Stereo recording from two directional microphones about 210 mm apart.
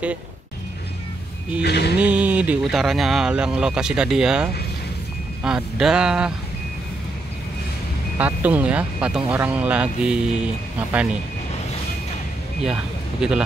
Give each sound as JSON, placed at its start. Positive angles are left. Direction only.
{"t": 1.6, "sound": "music", "side_deg": 50}
{"t": 2.0, "sound": "speech", "side_deg": -5}
{"t": 8.2, "sound": "speech", "side_deg": -5}
{"t": 13.2, "sound": "speech", "side_deg": -5}